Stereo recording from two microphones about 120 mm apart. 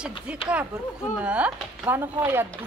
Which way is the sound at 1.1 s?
10° right (ahead or behind).